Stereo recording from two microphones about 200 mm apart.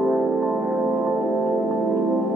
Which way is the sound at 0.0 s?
Centre (ahead or behind).